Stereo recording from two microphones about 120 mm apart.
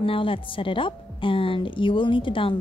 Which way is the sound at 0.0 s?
50° left (ahead or behind).